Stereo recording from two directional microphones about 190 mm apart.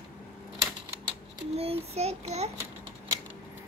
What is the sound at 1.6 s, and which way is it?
Child singing, 35° right (ahead or behind).